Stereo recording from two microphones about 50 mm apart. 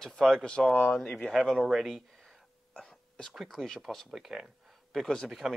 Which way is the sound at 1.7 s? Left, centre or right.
Centre.